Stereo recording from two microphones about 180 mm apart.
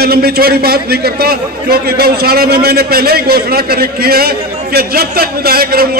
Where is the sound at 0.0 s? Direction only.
60° right (ahead or behind).